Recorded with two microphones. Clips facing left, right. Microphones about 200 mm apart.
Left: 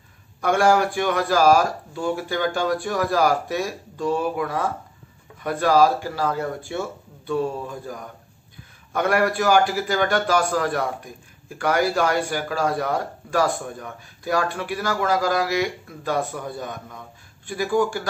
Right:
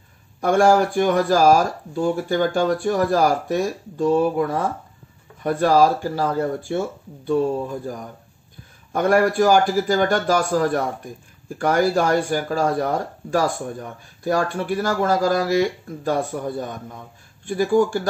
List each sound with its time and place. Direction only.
0.4 s speech: 45° right (ahead or behind)
8.9 s speech: 45° right (ahead or behind)
17.5 s speech: 45° right (ahead or behind)